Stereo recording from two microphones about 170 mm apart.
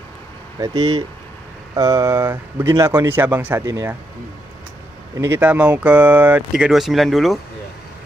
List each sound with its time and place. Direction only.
0.6 s speech: 25° right (ahead or behind)
5.2 s speech: 10° right (ahead or behind)